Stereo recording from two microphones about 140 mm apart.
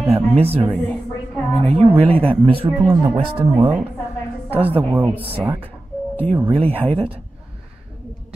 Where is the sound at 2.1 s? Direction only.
45° right (ahead or behind).